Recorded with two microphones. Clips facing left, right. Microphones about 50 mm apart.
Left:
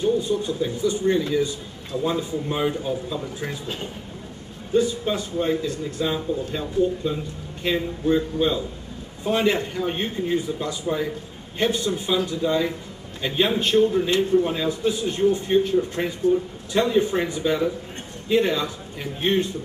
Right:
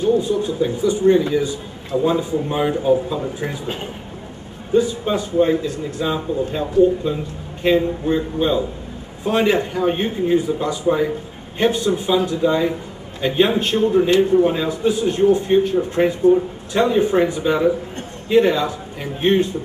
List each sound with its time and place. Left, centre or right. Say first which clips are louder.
0.3 s a man's voice: right 4 dB; centre
4.7 s a man's voice: right 4 dB; centre
15.7 s a man's voice: right 5 dB; right